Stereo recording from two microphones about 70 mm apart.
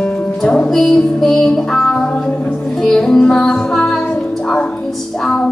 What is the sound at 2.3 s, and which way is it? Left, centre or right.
Music, left.